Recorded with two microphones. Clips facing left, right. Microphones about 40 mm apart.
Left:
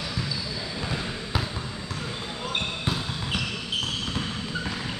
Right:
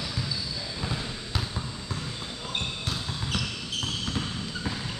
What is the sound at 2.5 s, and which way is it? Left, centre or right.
Basketball bounce, centre.